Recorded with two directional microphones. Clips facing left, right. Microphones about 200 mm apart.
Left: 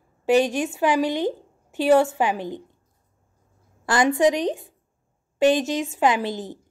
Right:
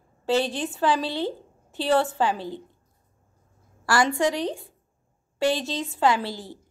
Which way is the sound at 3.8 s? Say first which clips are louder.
Left 4 dB; 20° left (ahead or behind).